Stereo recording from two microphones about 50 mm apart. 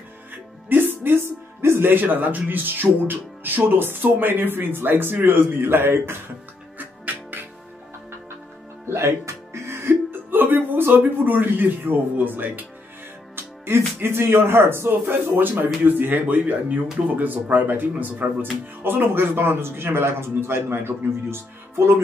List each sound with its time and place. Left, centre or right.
0.7 s speech: right
6.8 s music: right
8.8 s music: right
10.3 s speech: right
13.4 s a man's voice: right